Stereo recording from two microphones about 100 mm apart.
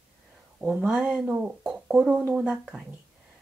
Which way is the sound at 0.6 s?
10° right (ahead or behind).